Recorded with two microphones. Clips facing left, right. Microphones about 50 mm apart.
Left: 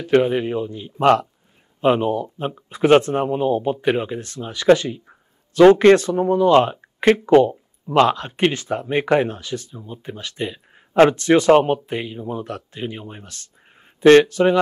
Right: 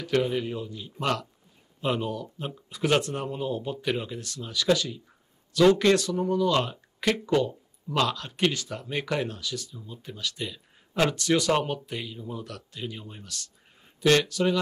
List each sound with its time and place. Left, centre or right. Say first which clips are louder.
0.0 s speech: left 9 dB; left